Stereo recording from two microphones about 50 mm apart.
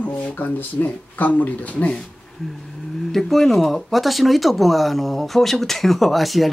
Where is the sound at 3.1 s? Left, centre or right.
Centre.